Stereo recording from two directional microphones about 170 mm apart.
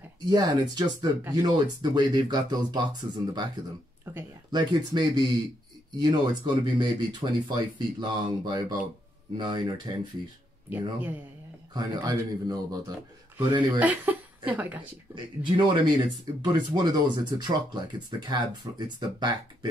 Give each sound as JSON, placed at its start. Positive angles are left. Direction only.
{"t": 0.3, "sound": "speech", "side_deg": -20}
{"t": 4.0, "sound": "speech", "side_deg": -10}
{"t": 4.5, "sound": "speech", "side_deg": -25}
{"t": 10.7, "sound": "speech", "side_deg": -10}
{"t": 11.7, "sound": "speech", "side_deg": -25}
{"t": 13.7, "sound": "speech", "side_deg": -10}
{"t": 15.1, "sound": "speech", "side_deg": -30}